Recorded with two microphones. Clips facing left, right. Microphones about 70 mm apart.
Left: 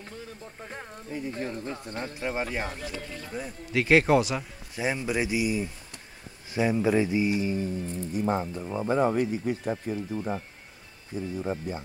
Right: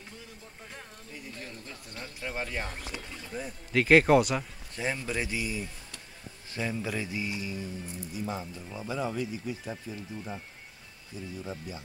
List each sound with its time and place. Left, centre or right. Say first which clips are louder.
0.6 s speech: left 6 dB; left
3.3 s a man's voice: even; centre
4.8 s speech: left 5 dB; centre; by 11.8 s left